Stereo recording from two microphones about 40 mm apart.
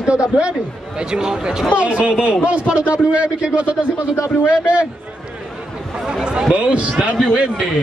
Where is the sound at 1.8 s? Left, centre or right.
Right.